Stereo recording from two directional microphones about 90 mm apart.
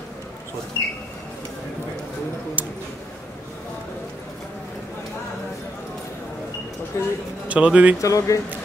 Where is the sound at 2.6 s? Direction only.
20° right (ahead or behind).